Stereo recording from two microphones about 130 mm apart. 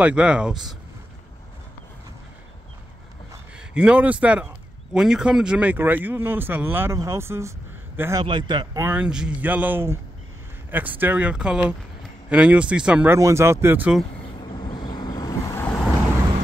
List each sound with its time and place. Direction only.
0.0 s speech: 10° right (ahead or behind)
3.5 s a man's voice: 10° right (ahead or behind)
8.2 s speech: 35° right (ahead or behind)
8.7 s speech: 15° right (ahead or behind)
13.1 s speech: 20° right (ahead or behind)
14.4 s vehicle: 35° left (ahead or behind)